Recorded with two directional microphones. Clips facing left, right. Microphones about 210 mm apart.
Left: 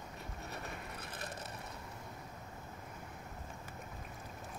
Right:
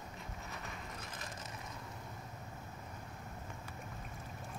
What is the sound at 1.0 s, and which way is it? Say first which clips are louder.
Crushing: left 2 dB; 60° left (ahead or behind).